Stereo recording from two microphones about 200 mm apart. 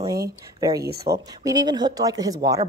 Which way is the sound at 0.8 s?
50° right (ahead or behind).